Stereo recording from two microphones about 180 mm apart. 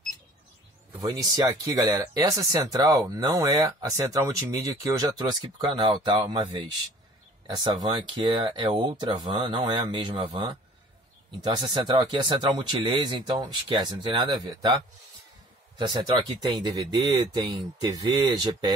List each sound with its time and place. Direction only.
1.2 s speech: 25° right (ahead or behind)
7.4 s speech: 25° right (ahead or behind)
15.8 s speech: 25° right (ahead or behind)